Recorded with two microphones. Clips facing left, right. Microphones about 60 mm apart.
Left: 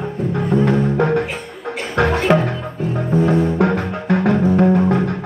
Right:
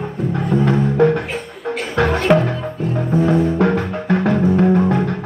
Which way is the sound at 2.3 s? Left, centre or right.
Centre.